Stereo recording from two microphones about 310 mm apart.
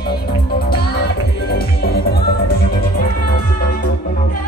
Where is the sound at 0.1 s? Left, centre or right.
Left.